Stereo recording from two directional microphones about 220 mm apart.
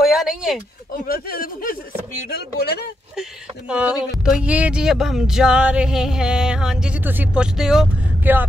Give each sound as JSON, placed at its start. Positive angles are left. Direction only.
{"t": 0.0, "sound": "speech", "side_deg": 0}
{"t": 1.0, "sound": "speech", "side_deg": 40}
{"t": 3.2, "sound": "speech", "side_deg": -5}